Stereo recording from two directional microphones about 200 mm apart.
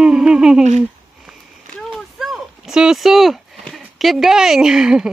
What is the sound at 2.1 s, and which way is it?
Speech, centre (ahead or behind).